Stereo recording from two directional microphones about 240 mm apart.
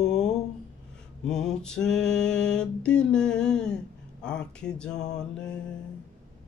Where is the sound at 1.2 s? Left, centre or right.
Centre.